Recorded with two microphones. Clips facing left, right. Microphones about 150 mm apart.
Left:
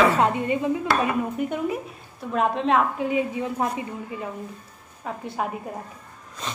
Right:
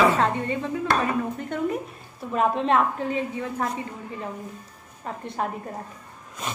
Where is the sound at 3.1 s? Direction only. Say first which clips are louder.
Left 3 dB; 15° left (ahead or behind).